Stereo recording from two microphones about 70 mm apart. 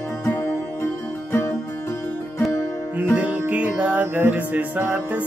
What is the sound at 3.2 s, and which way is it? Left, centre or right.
Music, centre.